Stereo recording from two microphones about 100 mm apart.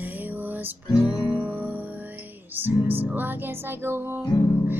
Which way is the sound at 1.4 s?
15° right (ahead or behind).